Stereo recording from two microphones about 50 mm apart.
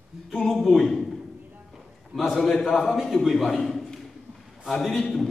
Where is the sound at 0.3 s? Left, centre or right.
Centre.